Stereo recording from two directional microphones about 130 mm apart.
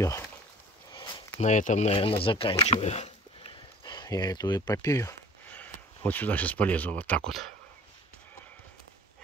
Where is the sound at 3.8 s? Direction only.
35° left (ahead or behind).